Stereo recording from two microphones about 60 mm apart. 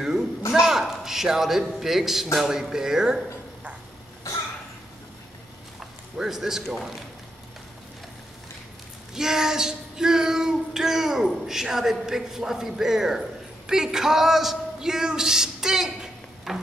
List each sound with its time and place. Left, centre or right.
0.5 s a man's voice: centre
2.3 s child singing: centre
5.8 s a man's voice: centre
9.1 s child singing: centre
13.7 s a man's voice: centre